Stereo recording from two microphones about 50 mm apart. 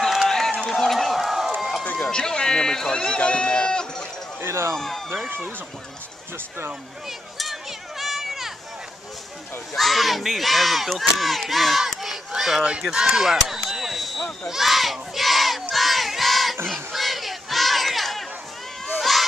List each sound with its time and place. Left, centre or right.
0.3 s run: centre
2.0 s run: centre
4.4 s speech: right
4.7 s speech: centre
7.1 s a sound: centre
9.8 s speech: centre
13.7 s a sound: centre
14.5 s speech: centre
15.7 s battle cry: centre
16.6 s crowd: centre
18.9 s a sound: centre